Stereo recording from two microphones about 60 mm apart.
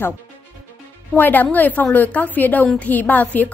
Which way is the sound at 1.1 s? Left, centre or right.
Left.